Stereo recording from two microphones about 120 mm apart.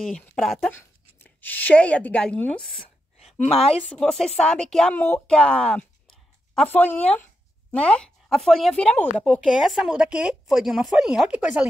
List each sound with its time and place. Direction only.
0.4 s speech: centre (ahead or behind)
1.2 s speech: 15° left (ahead or behind)
3.2 s a sound: 65° left (ahead or behind)
3.9 s speech: 5° left (ahead or behind)
9.5 s speech: 5° right (ahead or behind)